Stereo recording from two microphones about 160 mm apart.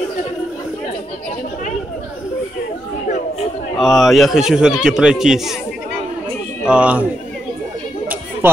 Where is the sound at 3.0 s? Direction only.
45° left (ahead or behind).